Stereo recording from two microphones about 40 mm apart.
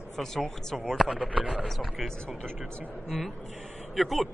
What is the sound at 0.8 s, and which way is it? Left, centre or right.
Speech, centre.